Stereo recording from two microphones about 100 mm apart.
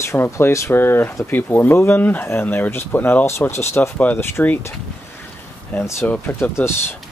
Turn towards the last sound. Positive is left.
turn(degrees=25)  # may be behind; listen again after turning